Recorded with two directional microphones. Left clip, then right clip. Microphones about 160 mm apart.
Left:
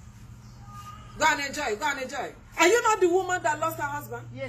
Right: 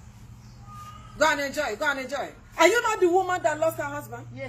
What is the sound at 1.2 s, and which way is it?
A woman's voice, 20° right (ahead or behind).